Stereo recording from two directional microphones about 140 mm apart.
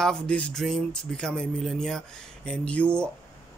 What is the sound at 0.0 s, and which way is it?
Speech, 5° left (ahead or behind).